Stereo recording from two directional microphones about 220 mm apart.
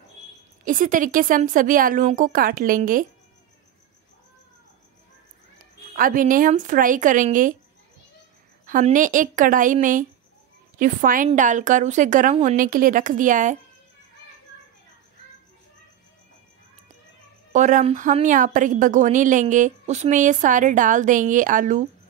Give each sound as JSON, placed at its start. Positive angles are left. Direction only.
{"t": 0.7, "sound": "a woman's voice", "side_deg": -35}
{"t": 5.9, "sound": "a woman's voice", "side_deg": -40}
{"t": 8.6, "sound": "a woman's voice", "side_deg": -35}
{"t": 17.5, "sound": "a woman's voice", "side_deg": -35}